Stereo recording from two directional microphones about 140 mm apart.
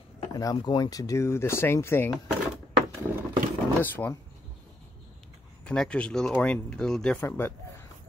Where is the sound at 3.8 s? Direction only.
15° left (ahead or behind).